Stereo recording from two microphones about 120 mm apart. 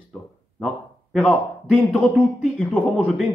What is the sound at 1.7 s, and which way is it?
Speech, 5° right (ahead or behind).